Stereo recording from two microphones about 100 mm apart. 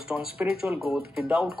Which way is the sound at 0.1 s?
5° right (ahead or behind).